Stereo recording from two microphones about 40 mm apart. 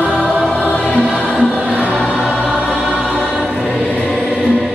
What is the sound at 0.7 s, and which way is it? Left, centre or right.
Music, left.